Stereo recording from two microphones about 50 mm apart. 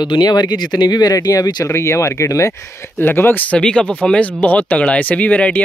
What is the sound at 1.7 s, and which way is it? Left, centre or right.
Speech, left.